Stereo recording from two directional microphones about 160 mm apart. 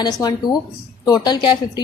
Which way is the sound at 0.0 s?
25° left (ahead or behind).